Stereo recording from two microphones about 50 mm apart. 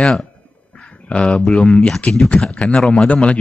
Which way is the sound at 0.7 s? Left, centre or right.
Left.